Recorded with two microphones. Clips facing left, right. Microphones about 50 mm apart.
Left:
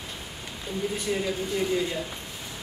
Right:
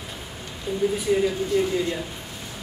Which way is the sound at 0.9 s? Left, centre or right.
Centre.